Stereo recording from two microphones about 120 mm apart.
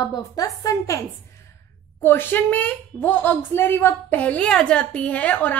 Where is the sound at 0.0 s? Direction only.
35° left (ahead or behind).